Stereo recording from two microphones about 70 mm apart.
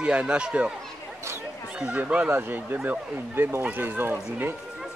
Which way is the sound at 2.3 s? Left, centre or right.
Right.